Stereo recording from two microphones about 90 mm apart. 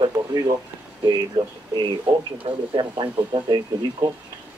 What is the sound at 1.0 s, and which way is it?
Speech, 55° right (ahead or behind).